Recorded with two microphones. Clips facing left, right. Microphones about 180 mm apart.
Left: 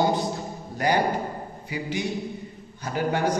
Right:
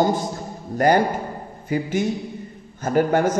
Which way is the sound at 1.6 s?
50° right (ahead or behind).